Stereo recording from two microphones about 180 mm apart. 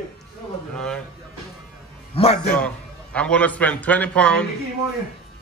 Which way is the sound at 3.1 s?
5° left (ahead or behind).